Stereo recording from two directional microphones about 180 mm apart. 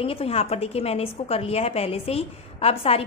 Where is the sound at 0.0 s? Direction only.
30° left (ahead or behind).